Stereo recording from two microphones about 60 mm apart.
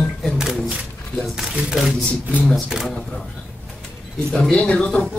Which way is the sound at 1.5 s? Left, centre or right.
Centre.